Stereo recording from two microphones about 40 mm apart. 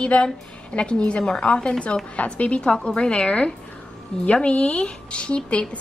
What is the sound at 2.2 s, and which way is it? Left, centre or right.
Speech, left.